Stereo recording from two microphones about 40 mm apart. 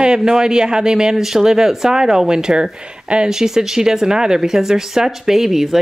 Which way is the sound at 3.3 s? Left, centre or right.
Centre.